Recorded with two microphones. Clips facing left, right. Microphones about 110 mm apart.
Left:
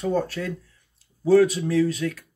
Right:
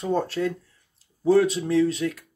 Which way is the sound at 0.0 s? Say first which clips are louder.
Right 1 dB; 25° right (ahead or behind).